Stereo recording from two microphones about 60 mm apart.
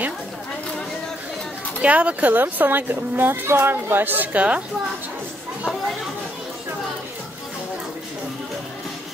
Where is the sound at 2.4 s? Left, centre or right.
Right.